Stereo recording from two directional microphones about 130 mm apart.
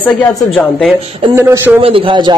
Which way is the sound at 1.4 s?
20° right (ahead or behind).